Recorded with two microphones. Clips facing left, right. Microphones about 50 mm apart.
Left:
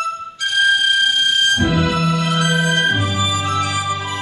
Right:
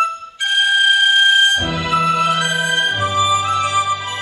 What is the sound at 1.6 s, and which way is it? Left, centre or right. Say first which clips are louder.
Music: even; centre.